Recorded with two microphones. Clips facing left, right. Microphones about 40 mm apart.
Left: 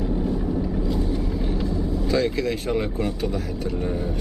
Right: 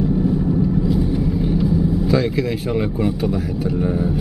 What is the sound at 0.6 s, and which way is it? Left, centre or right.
Speech, centre.